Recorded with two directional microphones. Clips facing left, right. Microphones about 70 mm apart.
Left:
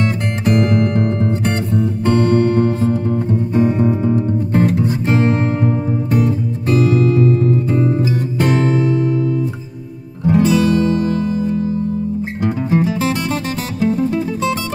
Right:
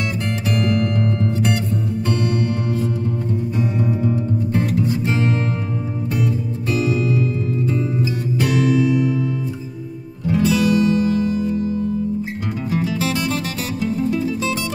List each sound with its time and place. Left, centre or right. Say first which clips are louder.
0.0 s music: left 5 dB; left
10.2 s music: left 4 dB; left